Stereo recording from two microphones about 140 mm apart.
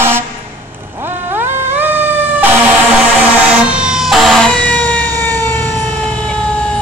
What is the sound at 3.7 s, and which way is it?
Emergency vehicle, 5° right (ahead or behind).